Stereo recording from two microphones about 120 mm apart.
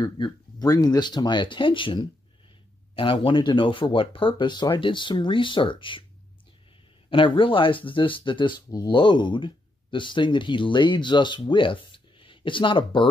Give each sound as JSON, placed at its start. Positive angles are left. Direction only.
{"t": 0.0, "sound": "speech", "side_deg": 35}
{"t": 7.1, "sound": "speech", "side_deg": 45}